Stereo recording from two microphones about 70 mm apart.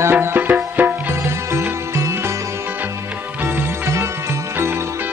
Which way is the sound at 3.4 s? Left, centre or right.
Right.